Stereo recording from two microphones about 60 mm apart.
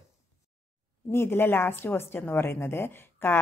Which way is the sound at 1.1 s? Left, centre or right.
Left.